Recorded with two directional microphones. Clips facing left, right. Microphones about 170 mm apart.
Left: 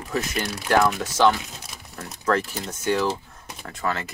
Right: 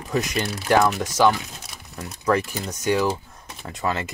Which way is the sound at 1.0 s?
10° right (ahead or behind).